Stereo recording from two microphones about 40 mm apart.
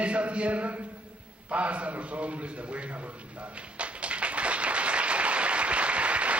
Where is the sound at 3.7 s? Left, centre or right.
Right.